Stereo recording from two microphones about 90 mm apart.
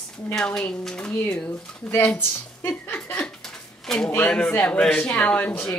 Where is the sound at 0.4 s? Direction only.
10° left (ahead or behind).